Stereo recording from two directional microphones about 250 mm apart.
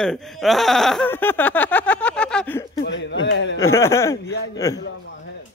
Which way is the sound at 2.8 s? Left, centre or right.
Left.